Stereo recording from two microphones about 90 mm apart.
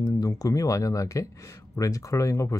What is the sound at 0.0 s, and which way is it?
Speech, 40° left (ahead or behind).